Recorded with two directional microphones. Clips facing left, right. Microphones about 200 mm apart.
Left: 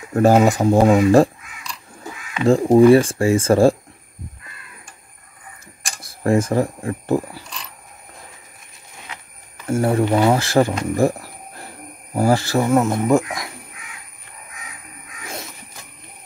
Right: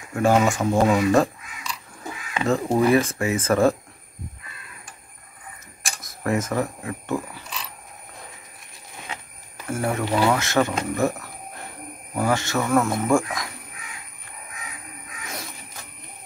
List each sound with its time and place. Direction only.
0.1 s speech: 40° left (ahead or behind)
2.4 s speech: 30° left (ahead or behind)
5.9 s speech: 30° left (ahead or behind)
9.7 s speech: 30° left (ahead or behind)